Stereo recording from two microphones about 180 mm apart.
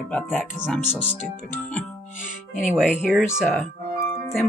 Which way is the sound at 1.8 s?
45° left (ahead or behind).